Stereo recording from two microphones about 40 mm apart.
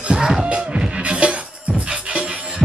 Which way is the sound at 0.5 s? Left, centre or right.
Right.